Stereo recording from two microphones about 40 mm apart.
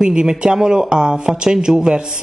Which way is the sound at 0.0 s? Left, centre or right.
Centre.